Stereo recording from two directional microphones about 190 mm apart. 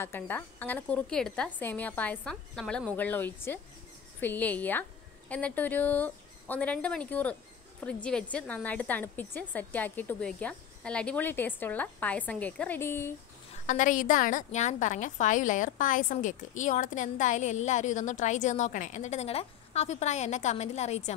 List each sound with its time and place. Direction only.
0.0 s a woman's voice: 10° left (ahead or behind)
13.7 s a woman's voice: 45° left (ahead or behind)